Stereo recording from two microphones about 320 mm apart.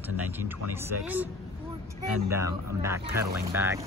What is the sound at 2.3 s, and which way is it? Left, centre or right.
Speech, centre.